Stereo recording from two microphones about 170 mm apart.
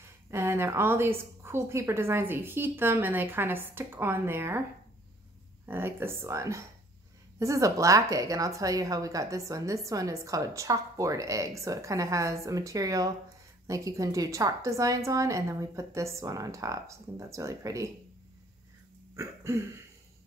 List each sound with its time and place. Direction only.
0.0 s a woman's voice: 15° right (ahead or behind)
5.7 s a woman's voice: 15° right (ahead or behind)
19.1 s a woman's voice: 20° right (ahead or behind)